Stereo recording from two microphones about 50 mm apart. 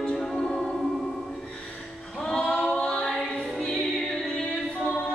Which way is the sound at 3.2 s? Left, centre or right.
Left.